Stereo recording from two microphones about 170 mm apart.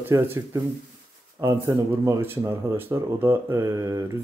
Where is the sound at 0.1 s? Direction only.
20° right (ahead or behind).